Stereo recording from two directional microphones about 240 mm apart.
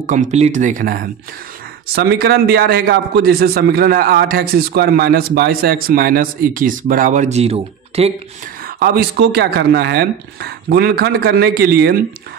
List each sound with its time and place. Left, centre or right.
0.0 s a man's voice: right
8.6 s a man's voice: right